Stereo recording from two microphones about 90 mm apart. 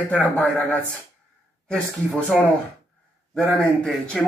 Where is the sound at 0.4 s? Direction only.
15° left (ahead or behind).